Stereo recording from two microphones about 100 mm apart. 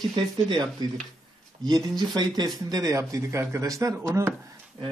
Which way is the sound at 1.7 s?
45° right (ahead or behind).